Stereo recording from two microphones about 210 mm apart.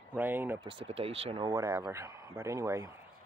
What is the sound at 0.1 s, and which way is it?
Speech, 10° right (ahead or behind).